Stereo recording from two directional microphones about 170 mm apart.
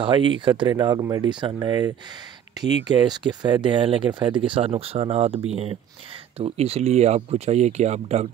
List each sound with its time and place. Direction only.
0.0 s speech: 30° right (ahead or behind)